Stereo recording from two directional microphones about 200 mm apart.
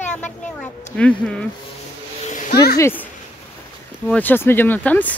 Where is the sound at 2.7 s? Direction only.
10° left (ahead or behind).